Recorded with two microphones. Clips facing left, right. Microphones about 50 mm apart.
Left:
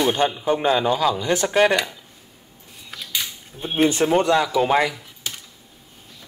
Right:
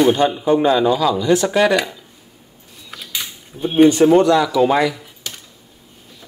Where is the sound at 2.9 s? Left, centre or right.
Centre.